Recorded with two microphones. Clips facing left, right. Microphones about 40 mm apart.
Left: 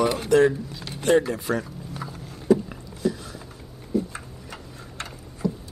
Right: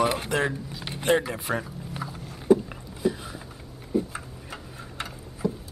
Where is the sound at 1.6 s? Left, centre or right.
Centre.